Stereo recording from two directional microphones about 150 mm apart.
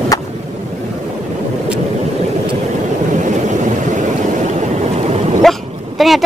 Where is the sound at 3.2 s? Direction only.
55° right (ahead or behind).